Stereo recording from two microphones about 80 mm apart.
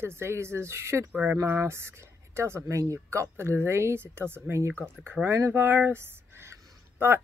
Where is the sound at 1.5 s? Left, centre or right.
Right.